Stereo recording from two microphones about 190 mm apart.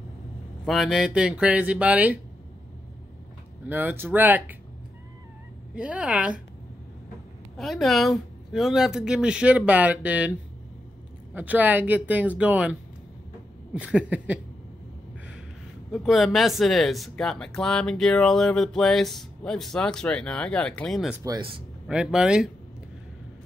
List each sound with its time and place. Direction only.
0.7 s speech: centre (ahead or behind)
3.6 s speech: 10° right (ahead or behind)
5.8 s speech: 5° right (ahead or behind)
7.5 s speech: centre (ahead or behind)
11.3 s speech: 10° right (ahead or behind)
13.7 s speech: 5° right (ahead or behind)
15.9 s speech: centre (ahead or behind)
21.2 s speech: 25° right (ahead or behind)
21.8 s speech: 5° right (ahead or behind)